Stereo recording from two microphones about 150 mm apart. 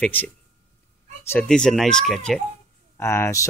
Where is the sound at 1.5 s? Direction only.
5° left (ahead or behind).